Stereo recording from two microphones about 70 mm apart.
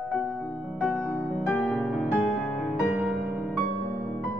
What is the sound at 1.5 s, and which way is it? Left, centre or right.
Music, centre.